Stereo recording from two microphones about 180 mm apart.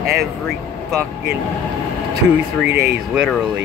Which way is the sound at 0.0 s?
60° right (ahead or behind).